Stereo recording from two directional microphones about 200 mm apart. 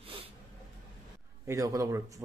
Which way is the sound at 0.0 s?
25° right (ahead or behind).